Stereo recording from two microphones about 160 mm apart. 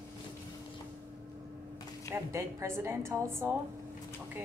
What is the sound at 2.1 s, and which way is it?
A woman's voice, 15° right (ahead or behind).